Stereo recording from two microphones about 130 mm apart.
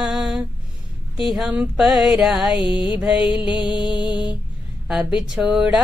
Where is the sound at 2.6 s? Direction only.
35° left (ahead or behind).